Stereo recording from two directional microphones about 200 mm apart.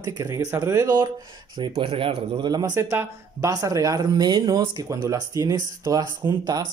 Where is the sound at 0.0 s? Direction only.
15° right (ahead or behind).